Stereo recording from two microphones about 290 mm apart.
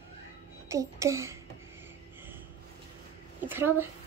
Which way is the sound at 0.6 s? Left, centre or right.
Centre.